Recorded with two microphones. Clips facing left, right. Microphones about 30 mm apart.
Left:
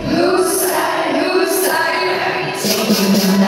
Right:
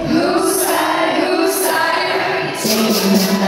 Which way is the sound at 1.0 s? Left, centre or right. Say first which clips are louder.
Right 1 dB; right.